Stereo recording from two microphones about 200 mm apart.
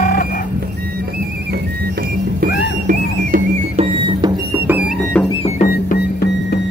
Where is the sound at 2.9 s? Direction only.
40° right (ahead or behind).